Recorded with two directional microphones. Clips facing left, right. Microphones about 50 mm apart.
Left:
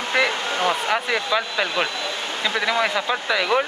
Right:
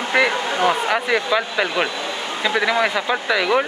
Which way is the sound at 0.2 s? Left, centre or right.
Centre.